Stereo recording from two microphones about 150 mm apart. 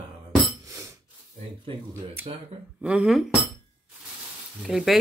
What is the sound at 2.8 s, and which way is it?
Speech, 5° right (ahead or behind).